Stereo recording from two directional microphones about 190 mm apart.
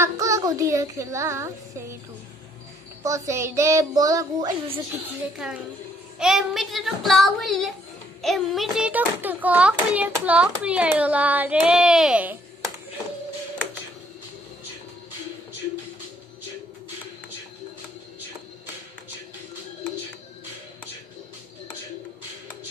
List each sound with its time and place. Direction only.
0.0 s a woman's voice: 15° right (ahead or behind)
3.0 s a child's voice: 15° right (ahead or behind)
5.4 s a child's voice: centre (ahead or behind)